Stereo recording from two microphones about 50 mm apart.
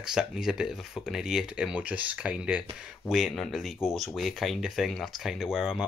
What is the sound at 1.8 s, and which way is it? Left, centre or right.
Speech, right.